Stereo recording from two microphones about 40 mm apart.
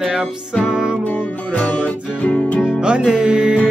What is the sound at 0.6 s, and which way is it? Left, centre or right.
Music, right.